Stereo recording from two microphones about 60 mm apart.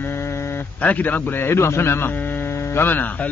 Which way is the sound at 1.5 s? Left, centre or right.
Left.